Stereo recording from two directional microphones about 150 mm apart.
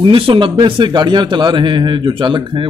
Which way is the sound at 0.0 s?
35° right (ahead or behind).